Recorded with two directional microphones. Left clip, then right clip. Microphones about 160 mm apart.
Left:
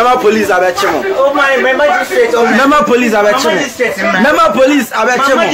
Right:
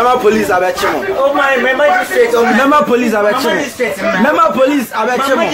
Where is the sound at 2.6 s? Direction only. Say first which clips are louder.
Left 2 dB; 15° left (ahead or behind).